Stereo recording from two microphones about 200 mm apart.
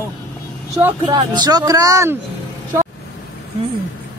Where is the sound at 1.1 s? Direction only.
20° right (ahead or behind).